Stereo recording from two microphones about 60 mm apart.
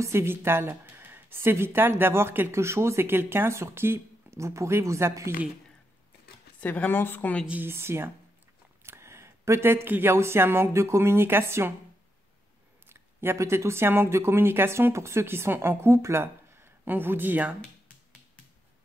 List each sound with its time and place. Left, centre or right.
0.0 s a woman's voice: right
6.6 s speech: left
6.9 s speech: left
7.6 s a woman's voice: right
12.9 s a sound: right
13.4 s a woman's voice: right